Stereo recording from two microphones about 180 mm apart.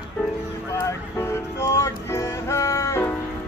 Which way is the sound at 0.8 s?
15° left (ahead or behind).